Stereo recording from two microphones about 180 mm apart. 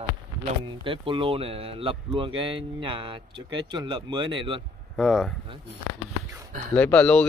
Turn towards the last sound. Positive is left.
turn(degrees=5)  # may be behind; listen again after turning